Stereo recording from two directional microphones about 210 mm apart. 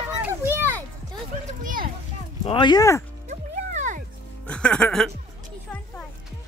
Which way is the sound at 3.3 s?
35° right (ahead or behind).